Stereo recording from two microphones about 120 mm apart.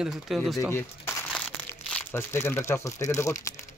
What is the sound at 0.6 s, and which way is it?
Speech, 20° left (ahead or behind).